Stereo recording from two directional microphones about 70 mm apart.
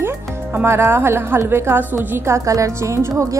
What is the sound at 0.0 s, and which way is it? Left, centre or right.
Music, right.